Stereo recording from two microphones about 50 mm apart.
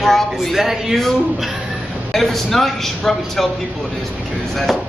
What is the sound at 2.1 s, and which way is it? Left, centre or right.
A woman's voice, centre.